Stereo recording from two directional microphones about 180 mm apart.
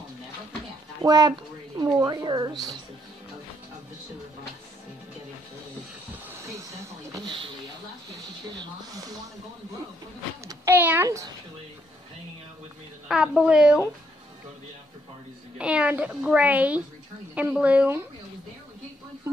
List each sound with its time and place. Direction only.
1.0 s a woman's voice: 20° right (ahead or behind)
6.2 s snake: 15° right (ahead or behind)
8.5 s a sound: 20° right (ahead or behind)
10.4 s a sound: 15° right (ahead or behind)
13.1 s a woman's voice: 5° right (ahead or behind)
15.5 s a child's voice: 5° right (ahead or behind)